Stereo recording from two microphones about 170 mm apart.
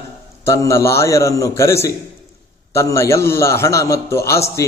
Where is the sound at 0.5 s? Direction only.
20° left (ahead or behind).